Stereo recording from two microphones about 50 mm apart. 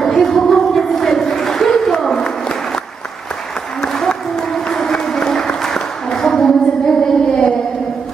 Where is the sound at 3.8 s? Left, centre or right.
Centre.